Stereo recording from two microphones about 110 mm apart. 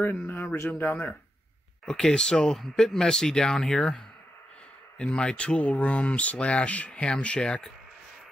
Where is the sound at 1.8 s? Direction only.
5° left (ahead or behind).